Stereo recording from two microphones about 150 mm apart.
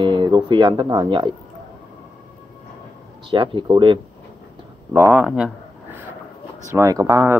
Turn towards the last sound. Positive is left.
turn(degrees=-20)  # may be behind; listen again after turning